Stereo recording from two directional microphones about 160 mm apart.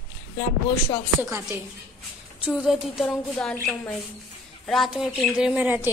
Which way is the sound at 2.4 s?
5° right (ahead or behind).